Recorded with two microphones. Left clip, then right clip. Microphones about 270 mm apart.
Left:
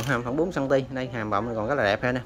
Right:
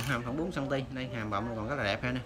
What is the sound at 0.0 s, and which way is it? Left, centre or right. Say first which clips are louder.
Speech: left 8 dB; centre.